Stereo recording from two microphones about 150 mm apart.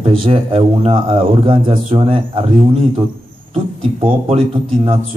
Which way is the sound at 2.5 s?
50° right (ahead or behind).